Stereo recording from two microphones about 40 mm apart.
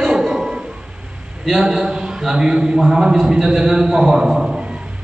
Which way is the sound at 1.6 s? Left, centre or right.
Centre.